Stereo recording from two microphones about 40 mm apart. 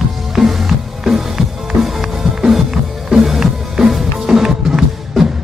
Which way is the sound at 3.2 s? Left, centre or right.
Centre.